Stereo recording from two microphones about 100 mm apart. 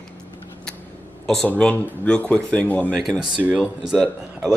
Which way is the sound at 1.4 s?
15° left (ahead or behind).